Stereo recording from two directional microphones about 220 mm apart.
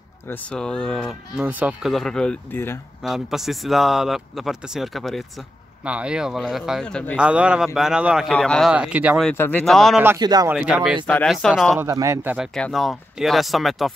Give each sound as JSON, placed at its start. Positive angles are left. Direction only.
{"t": 0.3, "sound": "a man's voice", "side_deg": 5}
{"t": 3.0, "sound": "a man's voice", "side_deg": 0}
{"t": 9.3, "sound": "a man's voice", "side_deg": 10}
{"t": 10.0, "sound": "a man's voice", "side_deg": -15}
{"t": 10.5, "sound": "a man's voice", "side_deg": -5}
{"t": 11.8, "sound": "a man's voice", "side_deg": -15}